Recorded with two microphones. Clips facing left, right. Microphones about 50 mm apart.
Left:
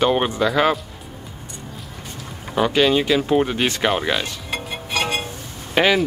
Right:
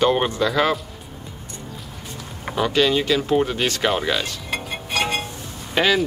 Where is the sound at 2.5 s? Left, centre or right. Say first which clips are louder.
Left 2 dB; centre.